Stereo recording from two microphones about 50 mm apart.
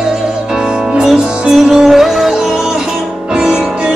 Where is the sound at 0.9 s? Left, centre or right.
Centre.